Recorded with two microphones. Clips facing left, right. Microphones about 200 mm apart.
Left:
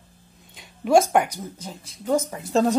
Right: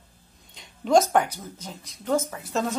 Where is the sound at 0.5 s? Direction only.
10° left (ahead or behind).